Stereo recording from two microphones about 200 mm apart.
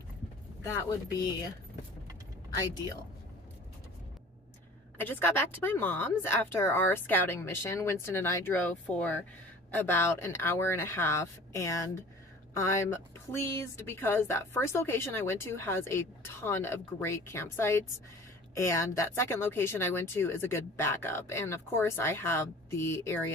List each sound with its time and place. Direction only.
0.7 s a woman's voice: 15° left (ahead or behind)
4.9 s a woman's voice: 10° left (ahead or behind)